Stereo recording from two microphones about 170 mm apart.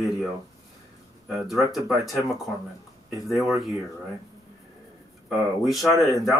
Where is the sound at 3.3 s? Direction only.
Centre (ahead or behind).